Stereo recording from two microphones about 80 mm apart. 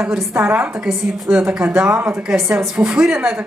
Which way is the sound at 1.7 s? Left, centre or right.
Right.